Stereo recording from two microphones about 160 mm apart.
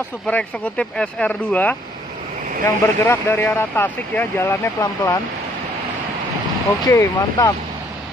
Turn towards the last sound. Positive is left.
turn(degrees=25)  # may be behind; listen again after turning